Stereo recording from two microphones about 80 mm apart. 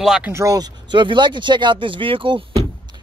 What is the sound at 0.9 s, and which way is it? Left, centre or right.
Speech, right.